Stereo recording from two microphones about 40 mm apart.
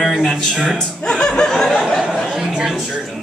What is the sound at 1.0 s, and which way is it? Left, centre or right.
Music, centre.